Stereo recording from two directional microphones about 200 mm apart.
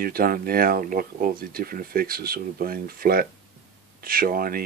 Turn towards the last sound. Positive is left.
turn(degrees=-45)  # may be behind; listen again after turning